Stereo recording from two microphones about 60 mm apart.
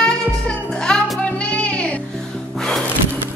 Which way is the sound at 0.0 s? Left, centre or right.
Centre.